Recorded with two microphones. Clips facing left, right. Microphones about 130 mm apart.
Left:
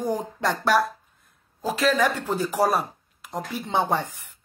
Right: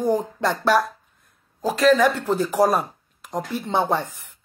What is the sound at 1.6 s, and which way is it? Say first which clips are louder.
Speech: right 6 dB; centre (ahead or behind).